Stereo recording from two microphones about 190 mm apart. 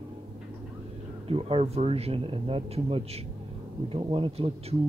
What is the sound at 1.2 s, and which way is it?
Speech, 30° right (ahead or behind).